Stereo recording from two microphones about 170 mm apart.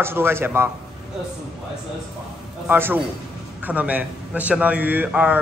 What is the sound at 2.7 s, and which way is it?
A man's voice, 10° right (ahead or behind).